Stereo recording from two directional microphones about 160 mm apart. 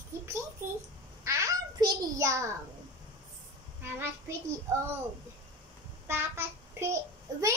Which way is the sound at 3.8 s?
15° right (ahead or behind).